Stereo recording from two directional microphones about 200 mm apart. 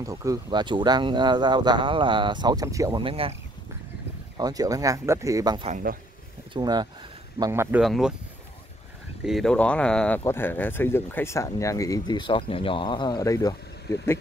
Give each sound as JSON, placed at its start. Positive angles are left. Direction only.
{"t": 0.0, "sound": "speech", "side_deg": -15}
{"t": 4.4, "sound": "speech", "side_deg": -20}
{"t": 5.7, "sound": "speech", "side_deg": -40}
{"t": 6.5, "sound": "speech", "side_deg": -20}
{"t": 7.8, "sound": "speech", "side_deg": 0}
{"t": 9.2, "sound": "speech", "side_deg": 0}